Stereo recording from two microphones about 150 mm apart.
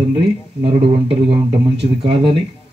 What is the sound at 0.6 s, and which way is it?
A man's voice, 40° right (ahead or behind).